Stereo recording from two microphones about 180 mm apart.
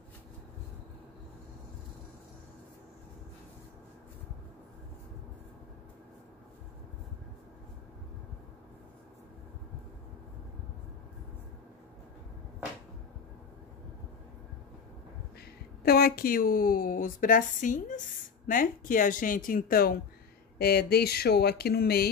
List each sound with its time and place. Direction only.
15.8 s speech: 55° left (ahead or behind)